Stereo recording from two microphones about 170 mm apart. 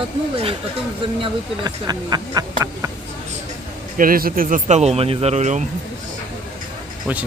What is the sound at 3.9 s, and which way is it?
Speech, 55° right (ahead or behind).